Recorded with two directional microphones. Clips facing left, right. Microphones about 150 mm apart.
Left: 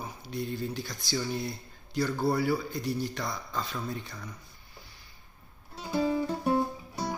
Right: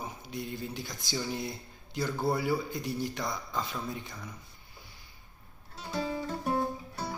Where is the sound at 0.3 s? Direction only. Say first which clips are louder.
Left 5 dB; 15° right (ahead or behind).